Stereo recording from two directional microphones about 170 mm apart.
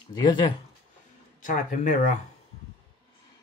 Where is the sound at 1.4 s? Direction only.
50° left (ahead or behind).